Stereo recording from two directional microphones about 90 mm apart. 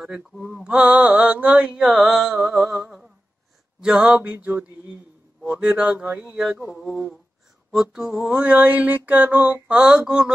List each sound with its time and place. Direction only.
0.0 s mantra: 5° right (ahead or behind)
1.8 s music: centre (ahead or behind)
3.8 s mantra: 10° right (ahead or behind)
6.8 s music: 5° right (ahead or behind)
7.7 s mantra: 5° right (ahead or behind)
9.8 s mantra: 10° right (ahead or behind)